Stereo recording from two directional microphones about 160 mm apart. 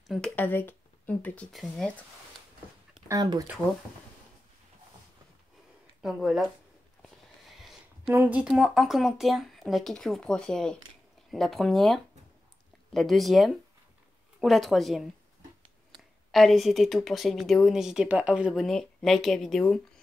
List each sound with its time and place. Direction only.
0.0 s speech: 5° left (ahead or behind)
3.1 s speech: 25° right (ahead or behind)
6.0 s a woman's voice: centre (ahead or behind)
7.0 s a sound: centre (ahead or behind)
8.1 s a woman's voice: 10° right (ahead or behind)
16.3 s a woman's voice: centre (ahead or behind)